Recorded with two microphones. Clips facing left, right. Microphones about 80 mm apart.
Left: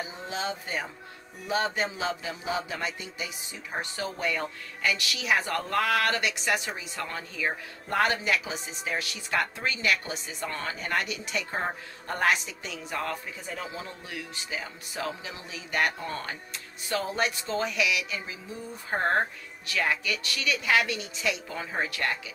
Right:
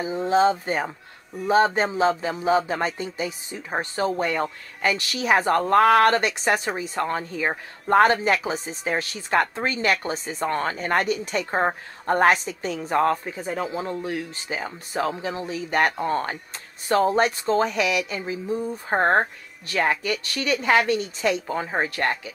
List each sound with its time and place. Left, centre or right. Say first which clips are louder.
0.0 s speech: right 14 dB; right